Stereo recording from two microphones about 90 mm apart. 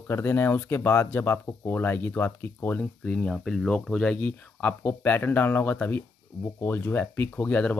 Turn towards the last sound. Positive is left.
turn(degrees=15)  # may be behind; listen again after turning